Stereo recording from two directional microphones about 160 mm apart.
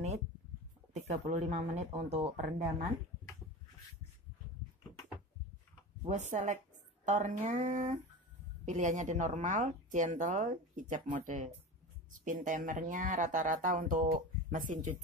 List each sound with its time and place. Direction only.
0.9 s speech: 45° right (ahead or behind)
6.0 s speech: 50° right (ahead or behind)